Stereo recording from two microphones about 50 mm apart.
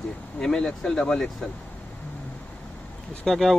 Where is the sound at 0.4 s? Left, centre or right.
Centre.